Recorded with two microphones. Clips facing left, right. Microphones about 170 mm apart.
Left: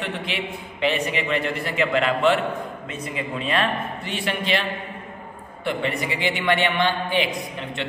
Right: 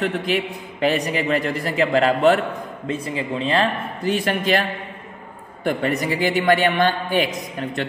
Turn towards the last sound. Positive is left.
turn(degrees=-45)  # may be behind; listen again after turning